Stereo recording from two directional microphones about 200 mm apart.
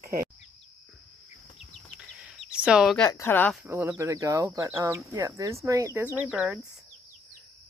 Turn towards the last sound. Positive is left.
turn(degrees=-5)  # may be behind; listen again after turning